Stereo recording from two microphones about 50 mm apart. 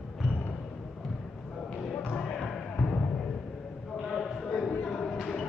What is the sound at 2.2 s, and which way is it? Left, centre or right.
Basketball bounce, centre.